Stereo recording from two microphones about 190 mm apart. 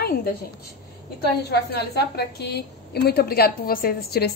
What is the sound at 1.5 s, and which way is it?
A woman's voice, 60° left (ahead or behind).